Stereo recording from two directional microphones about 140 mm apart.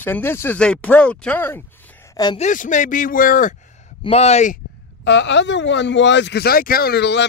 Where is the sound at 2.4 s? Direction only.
65° left (ahead or behind).